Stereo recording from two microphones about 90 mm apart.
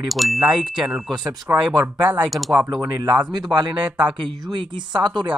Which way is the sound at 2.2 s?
Centre (ahead or behind).